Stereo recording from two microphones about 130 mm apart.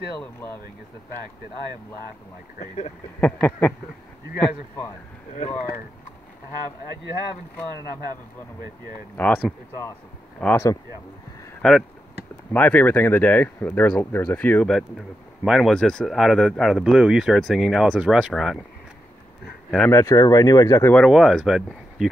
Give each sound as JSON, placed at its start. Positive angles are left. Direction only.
{"t": 0.2, "sound": "speech", "side_deg": 15}
{"t": 2.6, "sound": "speech", "side_deg": 60}
{"t": 3.2, "sound": "speech", "side_deg": 10}
{"t": 9.1, "sound": "speech", "side_deg": 10}
{"t": 11.6, "sound": "speech", "side_deg": 5}
{"t": 14.7, "sound": "speech", "side_deg": 0}
{"t": 19.9, "sound": "speech", "side_deg": 20}
{"t": 20.9, "sound": "speech", "side_deg": 0}